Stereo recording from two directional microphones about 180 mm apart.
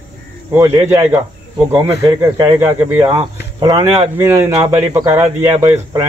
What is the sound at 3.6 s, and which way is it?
Speech, 25° right (ahead or behind).